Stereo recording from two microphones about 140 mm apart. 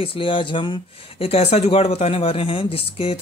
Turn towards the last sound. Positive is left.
turn(degrees=45)  # may be behind; listen again after turning